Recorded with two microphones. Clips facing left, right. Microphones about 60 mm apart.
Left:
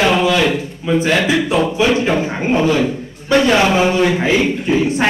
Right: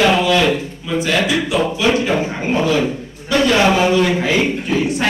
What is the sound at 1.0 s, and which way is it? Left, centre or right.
Speech, left.